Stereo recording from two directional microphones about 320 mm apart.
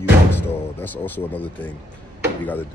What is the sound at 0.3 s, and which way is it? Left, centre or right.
Speech, centre.